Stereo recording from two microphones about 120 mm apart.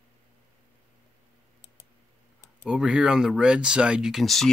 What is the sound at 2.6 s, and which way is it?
Speech, 5° right (ahead or behind).